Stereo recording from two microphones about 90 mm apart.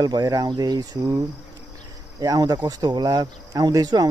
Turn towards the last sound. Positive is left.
turn(degrees=-45)  # may be behind; listen again after turning